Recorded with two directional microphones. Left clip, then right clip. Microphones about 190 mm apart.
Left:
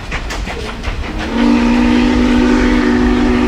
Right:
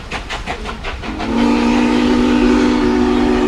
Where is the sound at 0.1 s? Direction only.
55° right (ahead or behind).